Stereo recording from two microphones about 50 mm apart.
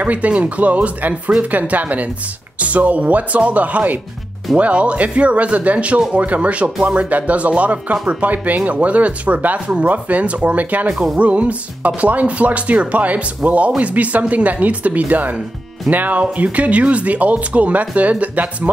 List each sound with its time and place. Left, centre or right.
0.0 s speech: right